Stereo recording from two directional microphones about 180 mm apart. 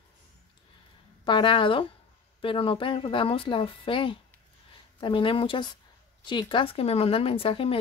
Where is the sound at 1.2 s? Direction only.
25° left (ahead or behind).